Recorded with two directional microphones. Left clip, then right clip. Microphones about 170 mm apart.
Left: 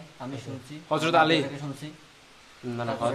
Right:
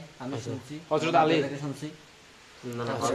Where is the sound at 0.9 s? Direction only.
50° left (ahead or behind).